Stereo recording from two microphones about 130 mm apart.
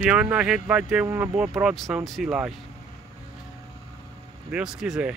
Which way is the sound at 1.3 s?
5° right (ahead or behind).